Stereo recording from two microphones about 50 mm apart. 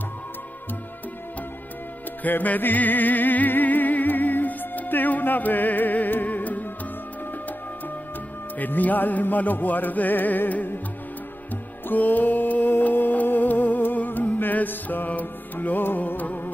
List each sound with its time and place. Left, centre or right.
2.2 s music: left
8.5 s music: left
11.9 s music: left